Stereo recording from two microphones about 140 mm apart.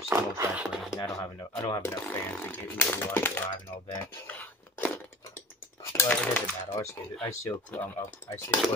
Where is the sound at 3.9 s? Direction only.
15° left (ahead or behind).